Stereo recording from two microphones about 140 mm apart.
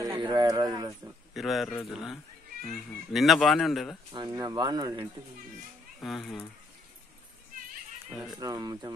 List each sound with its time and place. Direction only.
0.0 s speech: 30° right (ahead or behind)
1.3 s speech: centre (ahead or behind)
4.4 s speech: 30° right (ahead or behind)
5.9 s speech: centre (ahead or behind)
8.1 s speech: centre (ahead or behind)
8.4 s speech: 25° right (ahead or behind)